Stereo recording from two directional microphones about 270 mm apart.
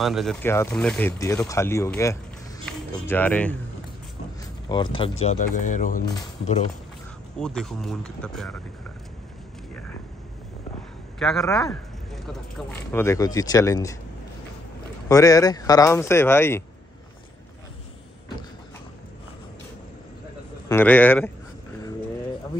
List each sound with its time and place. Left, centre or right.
0.0 s speech: centre
4.6 s speech: centre
7.3 s speech: centre
11.1 s a man's voice: centre
15.0 s speech: centre
20.6 s speech: centre